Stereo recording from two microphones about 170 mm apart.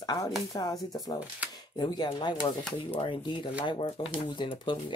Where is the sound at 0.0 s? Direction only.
25° left (ahead or behind).